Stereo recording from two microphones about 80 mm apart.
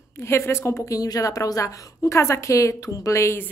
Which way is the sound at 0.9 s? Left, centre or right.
Left.